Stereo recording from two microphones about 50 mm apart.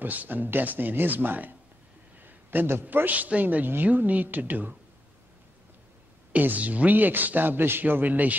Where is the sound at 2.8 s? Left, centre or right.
Right.